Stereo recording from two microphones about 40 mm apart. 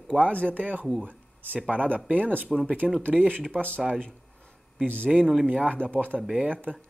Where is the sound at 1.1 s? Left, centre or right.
Right.